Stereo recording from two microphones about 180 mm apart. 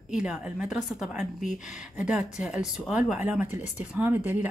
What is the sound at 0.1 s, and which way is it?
A woman's voice, 5° right (ahead or behind).